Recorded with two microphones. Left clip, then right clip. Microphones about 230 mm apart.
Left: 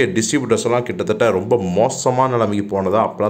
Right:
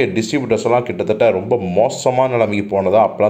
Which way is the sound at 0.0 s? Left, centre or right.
Centre.